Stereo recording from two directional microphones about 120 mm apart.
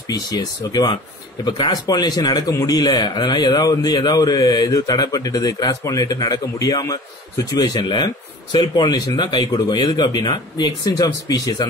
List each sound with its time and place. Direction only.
0.1 s a man's voice: 35° left (ahead or behind)